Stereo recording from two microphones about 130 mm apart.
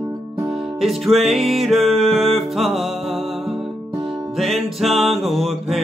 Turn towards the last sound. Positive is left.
turn(degrees=0)  # may be behind; listen again after turning